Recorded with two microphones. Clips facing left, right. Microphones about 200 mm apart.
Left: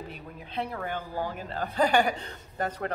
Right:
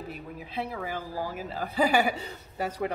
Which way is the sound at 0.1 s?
5° right (ahead or behind).